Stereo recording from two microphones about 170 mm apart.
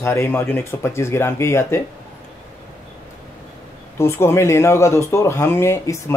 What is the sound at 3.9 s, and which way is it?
Speech, 15° left (ahead or behind).